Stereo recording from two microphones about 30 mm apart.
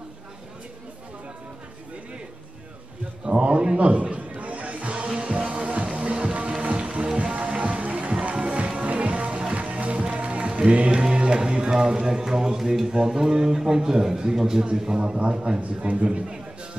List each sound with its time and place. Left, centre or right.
3.3 s a sound: right
5.0 s music: right
5.3 s music: right
12.1 s a man's voice: centre
15.1 s a man's voice: right